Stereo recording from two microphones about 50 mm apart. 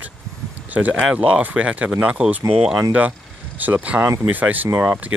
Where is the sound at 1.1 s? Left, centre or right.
Right.